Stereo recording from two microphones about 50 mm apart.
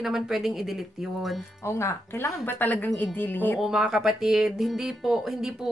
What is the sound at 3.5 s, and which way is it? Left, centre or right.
A woman's voice, centre.